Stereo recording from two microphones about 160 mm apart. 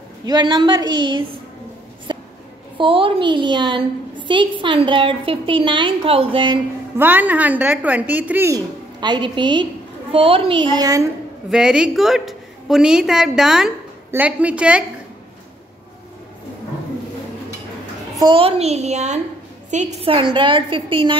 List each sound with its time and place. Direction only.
0.2 s a woman's voice: 25° right (ahead or behind)
2.8 s a woman's voice: 35° right (ahead or behind)
7.0 s a woman's voice: 10° right (ahead or behind)
11.5 s a woman's voice: 5° right (ahead or behind)
18.2 s a woman's voice: 35° right (ahead or behind)